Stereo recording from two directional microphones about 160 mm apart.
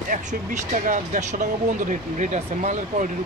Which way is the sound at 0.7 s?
55° right (ahead or behind).